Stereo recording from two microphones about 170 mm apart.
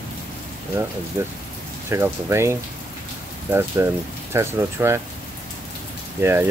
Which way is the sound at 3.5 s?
15° right (ahead or behind).